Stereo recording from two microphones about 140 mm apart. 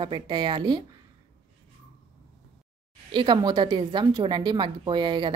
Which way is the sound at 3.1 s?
35° right (ahead or behind).